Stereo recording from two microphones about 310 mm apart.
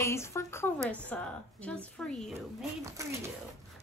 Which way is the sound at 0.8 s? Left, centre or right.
Centre.